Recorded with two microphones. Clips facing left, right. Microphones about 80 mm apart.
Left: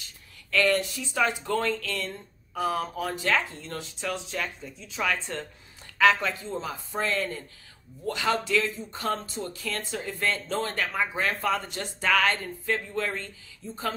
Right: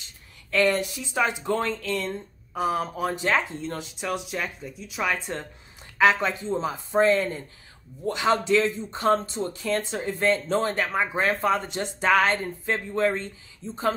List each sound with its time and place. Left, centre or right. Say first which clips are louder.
0.0 s speech: even; right